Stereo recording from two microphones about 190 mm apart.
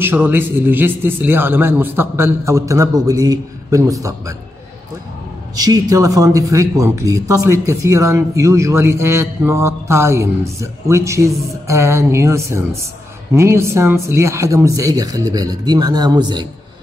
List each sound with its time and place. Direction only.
0.0 s speech: 10° right (ahead or behind)
5.6 s speech: 20° right (ahead or behind)